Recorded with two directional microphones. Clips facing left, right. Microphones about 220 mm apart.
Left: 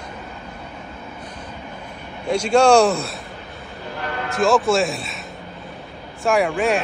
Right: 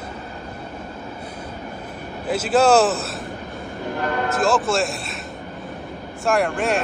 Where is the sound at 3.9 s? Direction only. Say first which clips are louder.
Right 4 dB; 45° right (ahead or behind).